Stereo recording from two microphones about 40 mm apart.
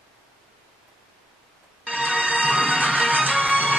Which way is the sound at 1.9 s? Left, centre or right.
Right.